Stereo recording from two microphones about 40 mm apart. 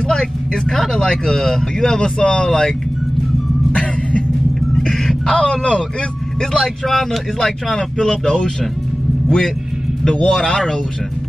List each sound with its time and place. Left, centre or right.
0.1 s speech: centre
5.2 s speech: left
6.5 s speech: centre
10.0 s speech: centre